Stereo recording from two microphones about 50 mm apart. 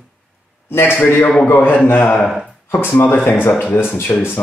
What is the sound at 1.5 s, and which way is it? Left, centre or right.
Speech, left.